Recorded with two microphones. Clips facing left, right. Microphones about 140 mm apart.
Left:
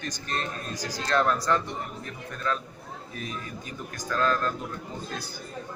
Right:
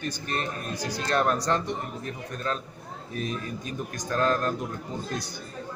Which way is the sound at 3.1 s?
20° left (ahead or behind).